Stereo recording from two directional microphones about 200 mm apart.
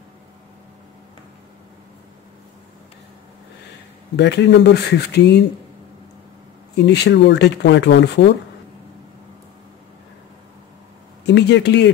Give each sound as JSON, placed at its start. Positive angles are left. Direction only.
{"t": 4.2, "sound": "speech", "side_deg": 60}
{"t": 6.9, "sound": "speech", "side_deg": 55}
{"t": 11.2, "sound": "speech", "side_deg": 60}